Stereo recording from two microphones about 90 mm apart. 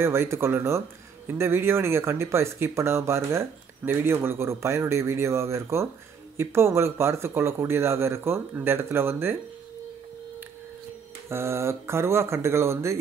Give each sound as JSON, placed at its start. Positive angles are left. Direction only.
{"t": 0.0, "sound": "speech", "side_deg": -30}
{"t": 11.2, "sound": "speech", "side_deg": -30}